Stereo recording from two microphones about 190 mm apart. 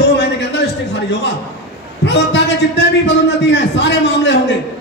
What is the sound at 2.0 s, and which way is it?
A man's voice, 65° left (ahead or behind).